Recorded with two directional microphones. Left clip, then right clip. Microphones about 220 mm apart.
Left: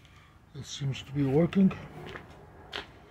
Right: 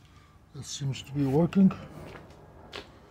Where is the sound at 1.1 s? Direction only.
10° right (ahead or behind).